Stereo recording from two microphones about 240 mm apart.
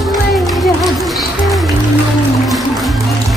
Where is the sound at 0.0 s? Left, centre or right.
Centre.